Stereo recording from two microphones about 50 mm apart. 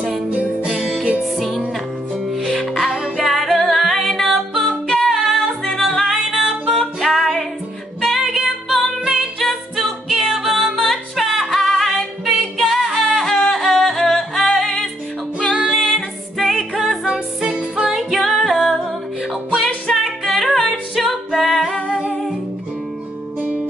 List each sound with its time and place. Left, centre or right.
0.7 s music: centre
4.6 s a capella: centre
5.0 s a capella: centre
5.8 s music: centre
9.4 s music: centre
13.3 s yodeling: centre
13.6 s music: centre
17.6 s music: centre
17.9 s music: centre